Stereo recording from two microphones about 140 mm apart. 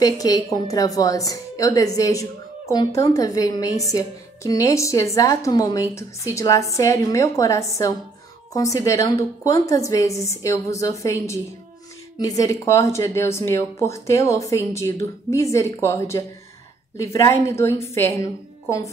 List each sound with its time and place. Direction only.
0.0 s a woman's voice: 25° left (ahead or behind)